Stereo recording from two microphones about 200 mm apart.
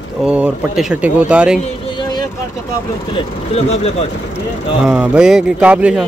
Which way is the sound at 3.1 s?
30° left (ahead or behind).